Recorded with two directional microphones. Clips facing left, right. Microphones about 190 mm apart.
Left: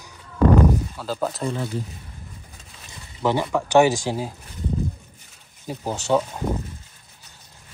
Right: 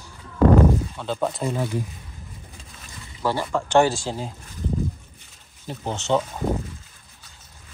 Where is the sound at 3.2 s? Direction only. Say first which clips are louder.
Left 2 dB; 15° left (ahead or behind).